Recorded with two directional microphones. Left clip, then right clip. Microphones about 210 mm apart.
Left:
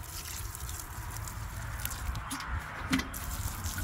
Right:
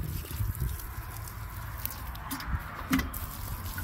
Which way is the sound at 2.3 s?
30° right (ahead or behind).